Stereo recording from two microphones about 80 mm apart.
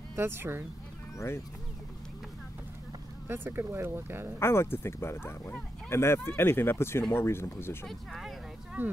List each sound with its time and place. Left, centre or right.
0.1 s speech: right
1.1 s speech: left
3.3 s speech: right
4.4 s speech: left
7.8 s speech: centre
8.8 s speech: right